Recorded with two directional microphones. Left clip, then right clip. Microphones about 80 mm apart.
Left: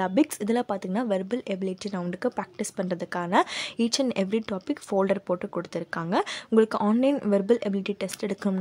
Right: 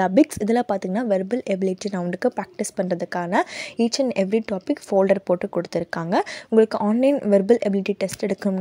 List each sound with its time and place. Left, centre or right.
0.0 s a woman's voice: right
1.0 s a woman's voice: right
1.5 s speech: right
2.9 s a woman's voice: right
6.5 s a woman's voice: right
7.2 s a woman's voice: right